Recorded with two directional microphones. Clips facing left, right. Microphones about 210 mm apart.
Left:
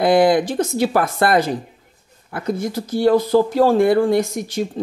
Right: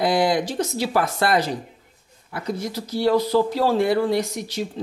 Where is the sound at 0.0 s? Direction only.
55° left (ahead or behind).